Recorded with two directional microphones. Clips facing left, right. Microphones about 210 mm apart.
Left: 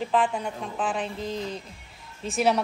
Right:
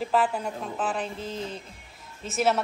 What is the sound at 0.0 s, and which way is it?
A woman's voice, 5° right (ahead or behind).